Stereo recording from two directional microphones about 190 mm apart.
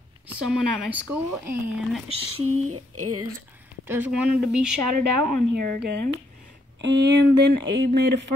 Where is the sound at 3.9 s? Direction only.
10° right (ahead or behind).